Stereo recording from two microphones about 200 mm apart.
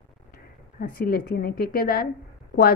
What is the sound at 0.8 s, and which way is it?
A woman's voice, 45° left (ahead or behind).